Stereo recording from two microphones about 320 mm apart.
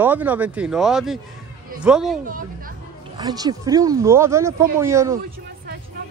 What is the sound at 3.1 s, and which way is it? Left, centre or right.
Speech, centre.